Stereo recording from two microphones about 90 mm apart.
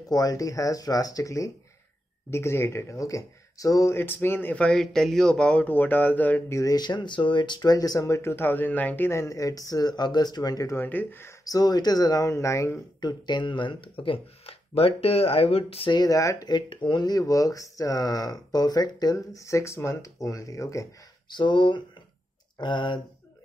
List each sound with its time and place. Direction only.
0.1 s speech: 40° left (ahead or behind)
4.0 s speech: 25° left (ahead or behind)
4.7 s speech: 5° left (ahead or behind)
6.5 s speech: 40° left (ahead or behind)
8.2 s speech: 25° left (ahead or behind)
9.1 s speech: 35° left (ahead or behind)
10.7 s speech: 20° left (ahead or behind)
11.4 s speech: 45° left (ahead or behind)
13.0 s speech: 60° left (ahead or behind); by 16.0 s 90° left
16.0 s speech: 40° left (ahead or behind); by 17.1 s 60° left (ahead or behind)
17.1 s speech: 40° left (ahead or behind)
21.3 s speech: 60° left (ahead or behind)